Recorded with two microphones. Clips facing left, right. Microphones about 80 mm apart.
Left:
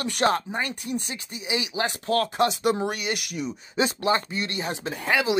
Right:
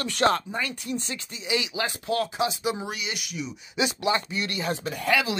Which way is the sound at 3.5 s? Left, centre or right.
Left.